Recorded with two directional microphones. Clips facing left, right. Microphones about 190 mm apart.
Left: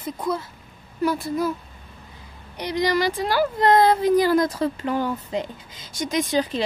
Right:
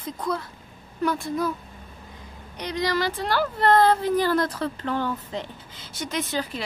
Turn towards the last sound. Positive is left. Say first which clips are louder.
# left 6 dB
turn(degrees=20)  # may be behind; listen again after turning